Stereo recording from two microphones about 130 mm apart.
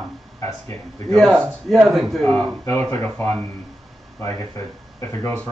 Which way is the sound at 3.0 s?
15° left (ahead or behind).